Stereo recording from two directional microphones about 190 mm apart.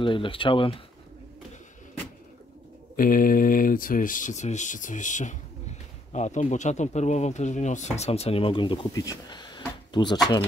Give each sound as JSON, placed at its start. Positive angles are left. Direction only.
{"t": 0.0, "sound": "speech", "side_deg": 25}
{"t": 3.0, "sound": "speech", "side_deg": 50}